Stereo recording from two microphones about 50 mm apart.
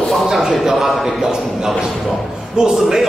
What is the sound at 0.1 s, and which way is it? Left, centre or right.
A man's voice, centre.